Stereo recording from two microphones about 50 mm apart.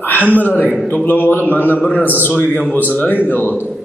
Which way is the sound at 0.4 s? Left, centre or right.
Left.